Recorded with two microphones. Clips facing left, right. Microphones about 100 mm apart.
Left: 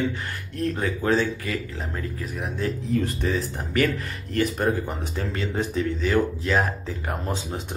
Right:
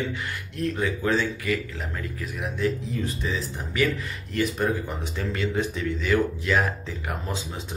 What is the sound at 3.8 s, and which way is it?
Speech, 35° left (ahead or behind).